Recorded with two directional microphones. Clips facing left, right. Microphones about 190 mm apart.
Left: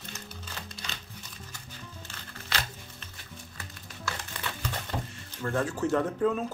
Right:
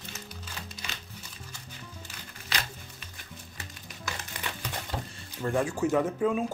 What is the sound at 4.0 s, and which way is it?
Crumpling, 15° right (ahead or behind).